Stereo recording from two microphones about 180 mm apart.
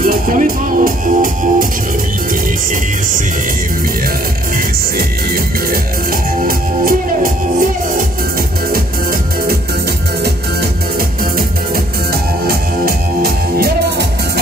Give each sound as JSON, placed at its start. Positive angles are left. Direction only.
{"t": 0.0, "sound": "music", "side_deg": -50}
{"t": 4.9, "sound": "music", "side_deg": -55}
{"t": 11.3, "sound": "music", "side_deg": -55}